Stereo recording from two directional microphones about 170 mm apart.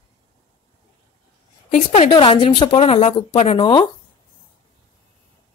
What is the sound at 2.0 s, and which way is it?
Speech, 30° left (ahead or behind).